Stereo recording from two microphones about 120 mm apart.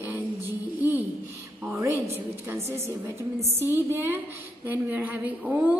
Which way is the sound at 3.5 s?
20° right (ahead or behind).